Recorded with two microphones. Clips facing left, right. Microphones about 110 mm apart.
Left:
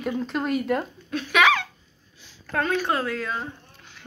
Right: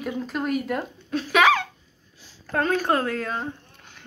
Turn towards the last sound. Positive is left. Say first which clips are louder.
# right 2 dB
turn(degrees=-45)  # may be behind; listen again after turning